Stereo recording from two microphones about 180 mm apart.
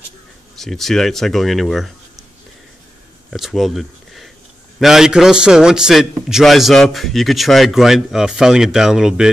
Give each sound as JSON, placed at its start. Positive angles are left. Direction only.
{"t": 0.6, "sound": "a man's voice", "side_deg": 0}
{"t": 3.3, "sound": "a man's voice", "side_deg": 0}